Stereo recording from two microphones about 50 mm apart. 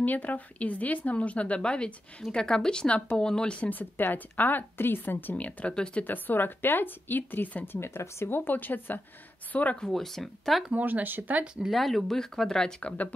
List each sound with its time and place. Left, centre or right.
0.0 s speech: left
3.7 s a woman's voice: left
5.3 s a woman's voice: left
7.7 s speech: left
8.5 s a woman's voice: left
9.8 s speech: centre
10.7 s speech: right
11.7 s speech: centre
12.8 s speech: left